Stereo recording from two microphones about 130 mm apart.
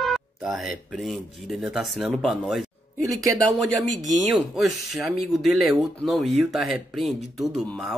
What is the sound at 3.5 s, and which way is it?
Speech, centre (ahead or behind).